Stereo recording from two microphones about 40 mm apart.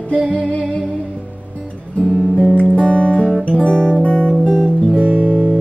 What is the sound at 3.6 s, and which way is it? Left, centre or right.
Guitar, left.